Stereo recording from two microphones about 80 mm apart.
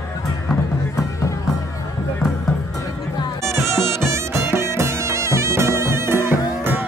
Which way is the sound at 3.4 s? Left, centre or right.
Right.